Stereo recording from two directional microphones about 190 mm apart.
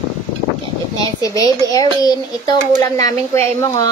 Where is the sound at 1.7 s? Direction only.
20° left (ahead or behind).